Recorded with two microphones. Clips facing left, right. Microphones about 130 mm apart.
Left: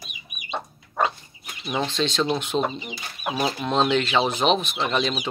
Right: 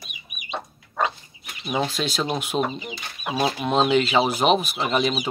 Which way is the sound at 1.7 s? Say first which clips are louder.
Even; 10° right (ahead or behind).